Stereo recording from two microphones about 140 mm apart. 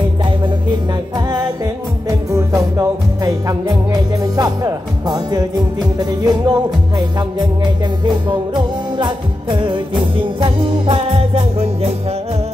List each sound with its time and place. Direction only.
0.2 s music: 30° right (ahead or behind)
8.9 s music: 35° right (ahead or behind)